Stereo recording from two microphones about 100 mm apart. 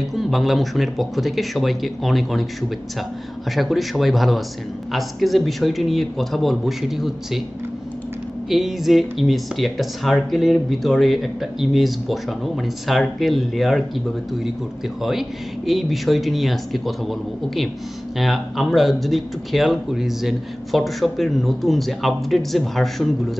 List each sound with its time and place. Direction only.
0.1 s speech: centre (ahead or behind)
3.5 s speech: centre (ahead or behind)
8.5 s speech: centre (ahead or behind)